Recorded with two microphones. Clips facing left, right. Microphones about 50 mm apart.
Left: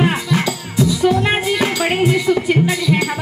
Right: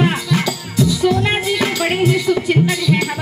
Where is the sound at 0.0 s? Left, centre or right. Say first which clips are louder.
Even; left.